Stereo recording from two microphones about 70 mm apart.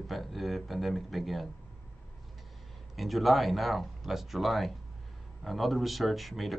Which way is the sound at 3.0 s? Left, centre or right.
Centre.